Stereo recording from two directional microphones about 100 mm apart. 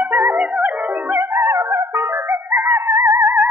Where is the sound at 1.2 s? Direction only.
30° right (ahead or behind).